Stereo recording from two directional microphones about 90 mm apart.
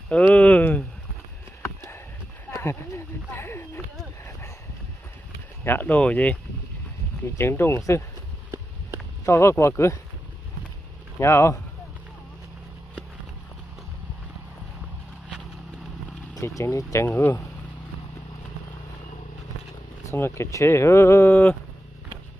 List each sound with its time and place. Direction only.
0.3 s a sound: 15° left (ahead or behind)
1.6 s a sound: 35° left (ahead or behind)
2.5 s speech: 30° left (ahead or behind)
5.6 s speech: 20° left (ahead or behind)
7.3 s speech: 25° left (ahead or behind)
9.2 s speech: 30° left (ahead or behind)
11.1 s speech: 30° left (ahead or behind)
16.3 s speech: 35° left (ahead or behind)
17.1 s speech: 20° left (ahead or behind)
20.1 s speech: 30° left (ahead or behind)